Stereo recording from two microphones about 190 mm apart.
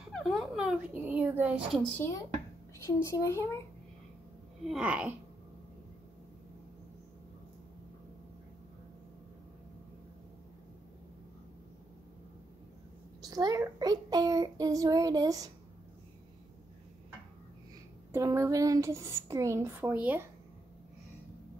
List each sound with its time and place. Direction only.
0.1 s speech: centre (ahead or behind)
2.0 s a woman's voice: 15° left (ahead or behind)
4.6 s speech: 5° right (ahead or behind)
13.2 s a child's voice: 20° right (ahead or behind)
18.1 s speech: 15° right (ahead or behind)